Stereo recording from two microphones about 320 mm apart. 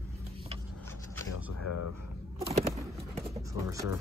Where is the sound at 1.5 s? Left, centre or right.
Left.